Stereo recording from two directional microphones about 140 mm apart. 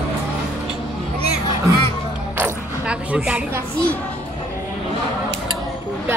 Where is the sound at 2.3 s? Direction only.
10° right (ahead or behind).